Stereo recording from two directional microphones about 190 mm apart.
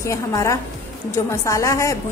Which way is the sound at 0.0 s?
15° left (ahead or behind).